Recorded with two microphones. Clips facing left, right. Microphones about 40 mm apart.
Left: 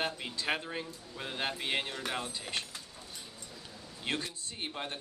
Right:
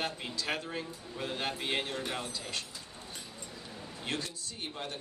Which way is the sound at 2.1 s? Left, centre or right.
Left.